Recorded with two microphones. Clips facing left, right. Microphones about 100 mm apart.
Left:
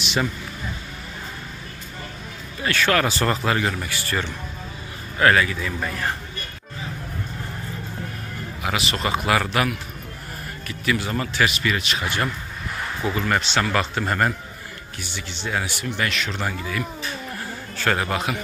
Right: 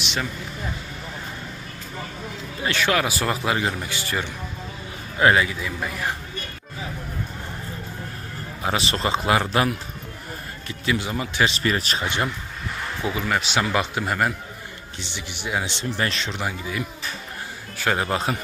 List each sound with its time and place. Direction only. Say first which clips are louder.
0.0 s vehicle: left 4 dB; 5° left (ahead or behind)
2.6 s a man's voice: left 2 dB; 15° right (ahead or behind)
3.5 s speech: left 1 dB; 20° right (ahead or behind)
5.8 s a man's voice: even; 5° right (ahead or behind)
8.6 s speech: right 1 dB; 30° right (ahead or behind)
11.4 s speech: right 2 dB; 35° right (ahead or behind)
13.0 s a man's voice: left 2 dB; 10° right (ahead or behind)
15.0 s speech: left 1 dB; 20° right (ahead or behind)
16.3 s a man's voice: left 1 dB; 15° right (ahead or behind); by 18.4 s 30° right (ahead or behind)